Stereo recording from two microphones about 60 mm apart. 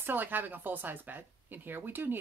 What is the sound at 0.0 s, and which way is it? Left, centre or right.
Speech, right.